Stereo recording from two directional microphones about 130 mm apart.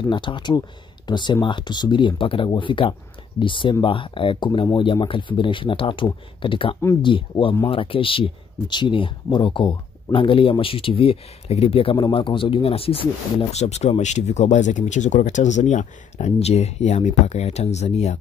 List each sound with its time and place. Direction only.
0.1 s speech: 40° left (ahead or behind)
13.5 s speech: 55° left (ahead or behind)